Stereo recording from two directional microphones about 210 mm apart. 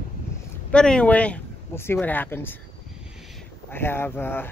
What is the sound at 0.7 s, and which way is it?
Speech, 5° left (ahead or behind).